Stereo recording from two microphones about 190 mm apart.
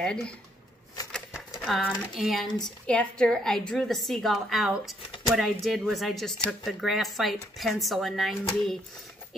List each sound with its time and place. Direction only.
0.0 s a woman's voice: 5° left (ahead or behind)
1.0 s a sound: 20° left (ahead or behind)
1.7 s a woman's voice: centre (ahead or behind)